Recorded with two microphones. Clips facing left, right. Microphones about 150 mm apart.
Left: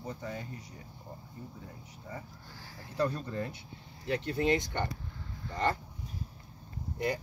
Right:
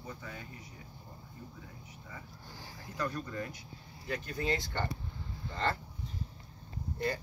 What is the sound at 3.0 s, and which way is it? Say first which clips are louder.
Speech: left 5 dB; 30° left (ahead or behind).